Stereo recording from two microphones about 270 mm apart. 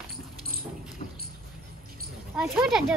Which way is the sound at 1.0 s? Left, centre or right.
Left.